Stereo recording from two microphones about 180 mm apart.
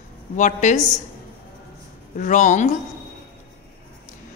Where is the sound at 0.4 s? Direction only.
45° left (ahead or behind).